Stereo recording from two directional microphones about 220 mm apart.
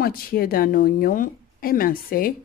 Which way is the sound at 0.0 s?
45° left (ahead or behind).